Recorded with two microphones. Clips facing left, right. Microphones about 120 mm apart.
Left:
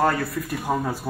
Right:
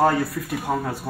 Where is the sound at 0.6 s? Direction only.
Centre (ahead or behind).